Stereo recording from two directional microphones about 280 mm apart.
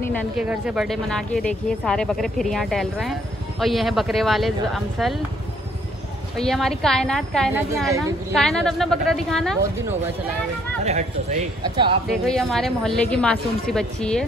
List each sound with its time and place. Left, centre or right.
0.0 s speech: centre
6.3 s speech: centre
10.8 s a man's voice: right
12.1 s speech: centre